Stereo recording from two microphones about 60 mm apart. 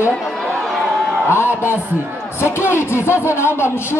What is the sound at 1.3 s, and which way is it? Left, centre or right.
A man's voice, left.